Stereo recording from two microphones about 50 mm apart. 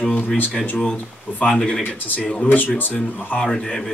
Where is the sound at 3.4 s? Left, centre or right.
Centre.